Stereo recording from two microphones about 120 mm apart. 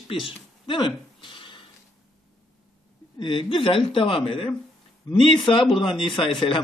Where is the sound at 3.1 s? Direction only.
40° left (ahead or behind).